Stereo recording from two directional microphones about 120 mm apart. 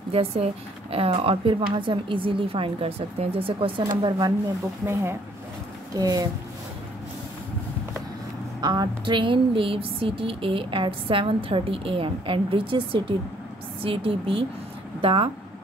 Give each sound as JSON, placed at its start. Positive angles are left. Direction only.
{"t": 0.1, "sound": "a woman's voice", "side_deg": -55}
{"t": 4.8, "sound": "speech", "side_deg": -25}
{"t": 8.5, "sound": "a woman's voice", "side_deg": -35}